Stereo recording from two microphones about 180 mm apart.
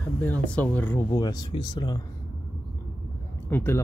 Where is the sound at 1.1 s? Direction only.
25° left (ahead or behind).